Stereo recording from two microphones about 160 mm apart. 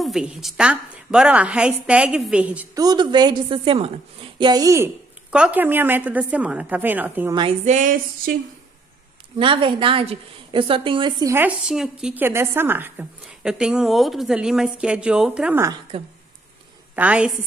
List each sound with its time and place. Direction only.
0.0 s a woman's voice: centre (ahead or behind)
2.7 s a woman's voice: 25° right (ahead or behind)
5.3 s a woman's voice: 10° right (ahead or behind)
7.6 s a sound: 50° right (ahead or behind)
9.4 s a woman's voice: 30° right (ahead or behind)
11.3 s a woman's voice: 5° right (ahead or behind)
15.9 s a woman's voice: 35° right (ahead or behind)
16.9 s a woman's voice: 10° right (ahead or behind)